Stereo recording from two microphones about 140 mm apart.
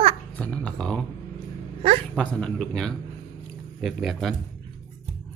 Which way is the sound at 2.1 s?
5° left (ahead or behind).